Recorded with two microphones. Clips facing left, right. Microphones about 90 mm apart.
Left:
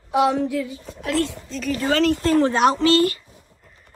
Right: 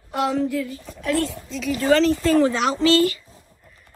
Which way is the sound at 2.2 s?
50° left (ahead or behind).